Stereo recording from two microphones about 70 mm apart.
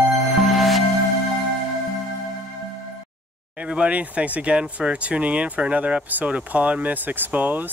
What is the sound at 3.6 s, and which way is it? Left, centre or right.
Speech, centre.